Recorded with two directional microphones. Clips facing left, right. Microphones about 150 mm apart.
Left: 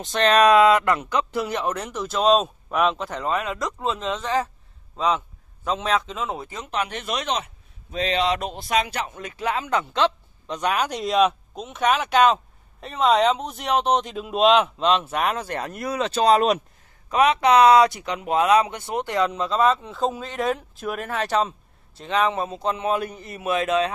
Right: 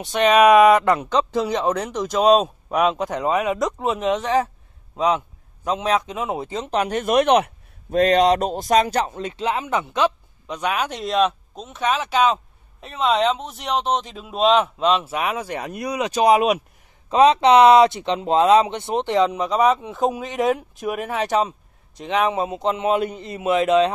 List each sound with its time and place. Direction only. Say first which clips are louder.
0.0 s a man's voice: right 3 dB; 10° right (ahead or behind)
17.1 s a man's voice: right 4 dB; 25° right (ahead or behind)